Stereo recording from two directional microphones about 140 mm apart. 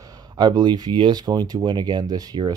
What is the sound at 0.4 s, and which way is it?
Speech, 30° right (ahead or behind).